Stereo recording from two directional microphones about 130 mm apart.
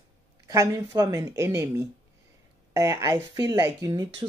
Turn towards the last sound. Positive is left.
turn(degrees=-25)  # may be behind; listen again after turning